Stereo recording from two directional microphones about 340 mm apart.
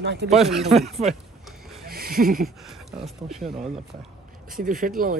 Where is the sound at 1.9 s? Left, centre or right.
Right.